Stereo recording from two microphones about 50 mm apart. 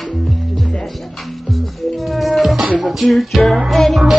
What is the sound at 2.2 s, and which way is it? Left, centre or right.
Music, centre.